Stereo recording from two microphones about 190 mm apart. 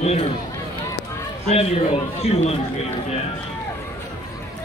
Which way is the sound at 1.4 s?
30° left (ahead or behind).